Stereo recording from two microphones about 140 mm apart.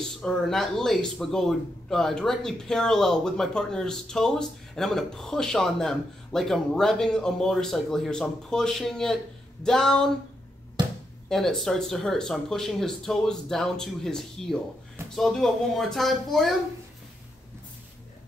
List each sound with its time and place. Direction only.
0.0 s speech: 5° left (ahead or behind)
10.8 s a sound: 35° right (ahead or behind)
11.2 s speech: centre (ahead or behind)